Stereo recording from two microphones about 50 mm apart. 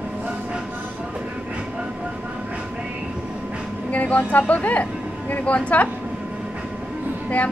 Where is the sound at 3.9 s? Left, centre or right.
Left.